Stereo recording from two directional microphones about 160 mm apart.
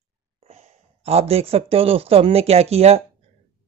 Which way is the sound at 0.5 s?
40° right (ahead or behind).